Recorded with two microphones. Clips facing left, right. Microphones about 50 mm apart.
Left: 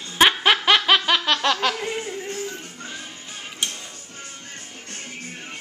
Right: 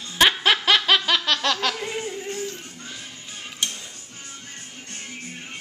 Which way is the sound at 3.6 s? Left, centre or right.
Centre.